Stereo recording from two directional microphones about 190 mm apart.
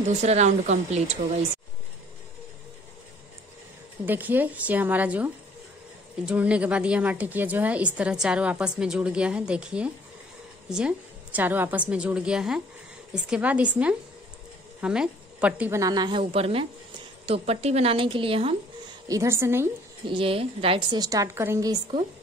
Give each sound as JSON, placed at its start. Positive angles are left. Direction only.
{"t": 0.2, "sound": "speech", "side_deg": -35}
{"t": 4.0, "sound": "a woman's voice", "side_deg": -10}
{"t": 19.0, "sound": "a woman's voice", "side_deg": -15}
{"t": 20.1, "sound": "a woman's voice", "side_deg": -30}